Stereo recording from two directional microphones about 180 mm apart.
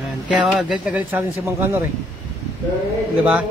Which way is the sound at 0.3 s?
5° right (ahead or behind).